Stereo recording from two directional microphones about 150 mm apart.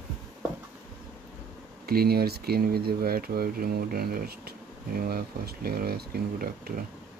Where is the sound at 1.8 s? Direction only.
90° right.